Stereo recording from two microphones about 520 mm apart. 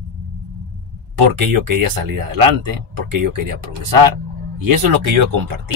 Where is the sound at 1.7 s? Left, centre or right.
Right.